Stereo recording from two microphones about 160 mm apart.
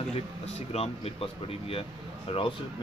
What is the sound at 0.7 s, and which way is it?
Speech, 40° left (ahead or behind).